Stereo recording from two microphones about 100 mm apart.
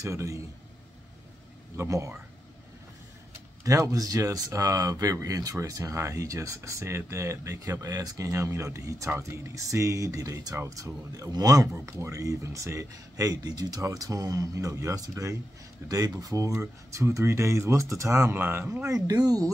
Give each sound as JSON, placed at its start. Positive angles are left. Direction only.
{"t": 0.0, "sound": "speech", "side_deg": -30}
{"t": 1.8, "sound": "speech", "side_deg": -30}
{"t": 3.6, "sound": "speech", "side_deg": -35}